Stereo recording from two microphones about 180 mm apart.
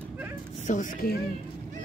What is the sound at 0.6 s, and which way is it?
Speech, 45° left (ahead or behind).